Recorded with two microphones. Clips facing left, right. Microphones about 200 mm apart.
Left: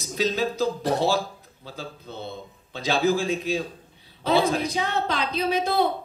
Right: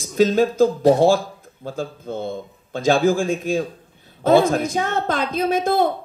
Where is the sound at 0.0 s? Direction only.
50° right (ahead or behind).